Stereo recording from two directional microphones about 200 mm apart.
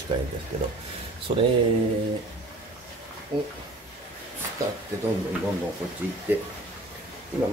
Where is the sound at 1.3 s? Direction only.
25° right (ahead or behind).